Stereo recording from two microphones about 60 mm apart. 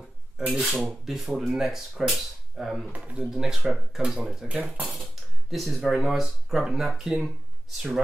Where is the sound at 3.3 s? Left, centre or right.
Centre.